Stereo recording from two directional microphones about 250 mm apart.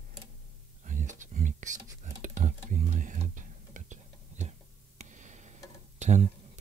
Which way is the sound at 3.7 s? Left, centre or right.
Right.